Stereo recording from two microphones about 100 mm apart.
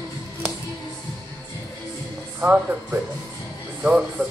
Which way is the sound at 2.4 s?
15° right (ahead or behind).